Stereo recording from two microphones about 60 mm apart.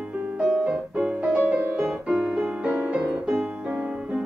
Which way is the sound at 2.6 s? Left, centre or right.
Right.